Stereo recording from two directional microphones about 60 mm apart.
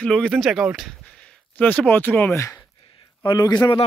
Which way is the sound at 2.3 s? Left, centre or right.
Left.